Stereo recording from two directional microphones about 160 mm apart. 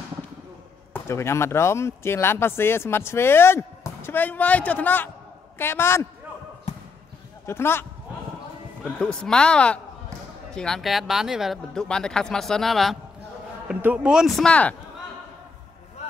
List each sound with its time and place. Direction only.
0.9 s speech: 15° left (ahead or behind)
7.4 s speech: 15° left (ahead or behind)
9.0 s speech: 5° left (ahead or behind)
13.7 s speech: 10° right (ahead or behind); by 14.8 s 10° left (ahead or behind)